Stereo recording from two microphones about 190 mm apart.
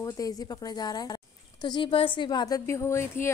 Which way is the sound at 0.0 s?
20° left (ahead or behind).